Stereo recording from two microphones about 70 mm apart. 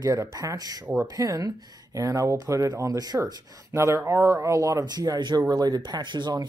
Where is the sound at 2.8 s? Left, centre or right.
Right.